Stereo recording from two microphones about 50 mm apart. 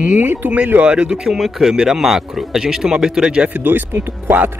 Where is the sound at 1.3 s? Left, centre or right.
Centre.